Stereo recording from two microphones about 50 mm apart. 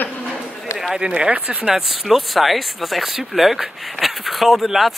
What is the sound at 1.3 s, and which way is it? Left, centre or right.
Speech, right.